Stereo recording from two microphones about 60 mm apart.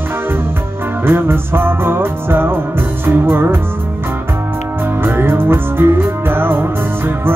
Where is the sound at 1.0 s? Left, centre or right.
Right.